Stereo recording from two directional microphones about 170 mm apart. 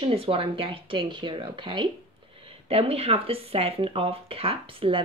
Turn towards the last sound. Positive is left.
turn(degrees=-30)  # may be behind; listen again after turning